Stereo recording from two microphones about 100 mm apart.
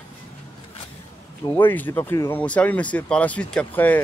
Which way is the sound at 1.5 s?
20° left (ahead or behind).